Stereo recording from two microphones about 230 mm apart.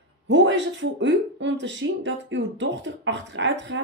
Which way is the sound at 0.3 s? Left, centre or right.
Right.